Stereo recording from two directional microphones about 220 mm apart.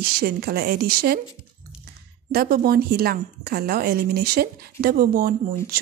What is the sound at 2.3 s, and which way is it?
A woman's voice, 45° right (ahead or behind).